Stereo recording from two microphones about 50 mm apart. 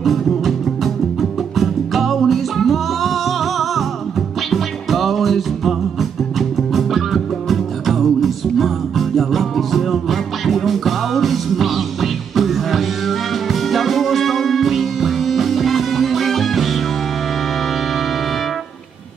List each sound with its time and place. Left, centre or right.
0.0 s music: centre
1.6 s music: centre
4.5 s music: centre
7.4 s music: centre